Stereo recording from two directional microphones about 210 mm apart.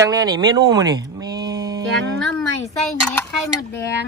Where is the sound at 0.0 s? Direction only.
15° right (ahead or behind).